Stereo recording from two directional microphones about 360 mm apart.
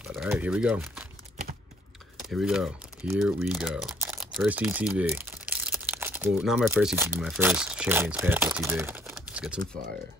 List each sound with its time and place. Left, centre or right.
0.1 s speech: centre
2.1 s speech: centre